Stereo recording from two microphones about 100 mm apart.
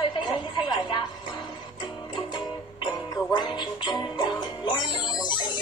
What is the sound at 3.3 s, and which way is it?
Music, 50° left (ahead or behind).